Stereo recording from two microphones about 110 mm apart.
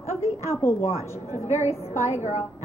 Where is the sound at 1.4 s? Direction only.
75° left (ahead or behind).